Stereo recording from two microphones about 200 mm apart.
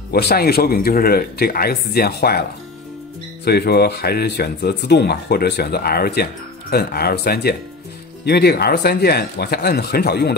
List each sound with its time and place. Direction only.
0.1 s speech: 55° left (ahead or behind)
3.4 s speech: 55° left (ahead or behind)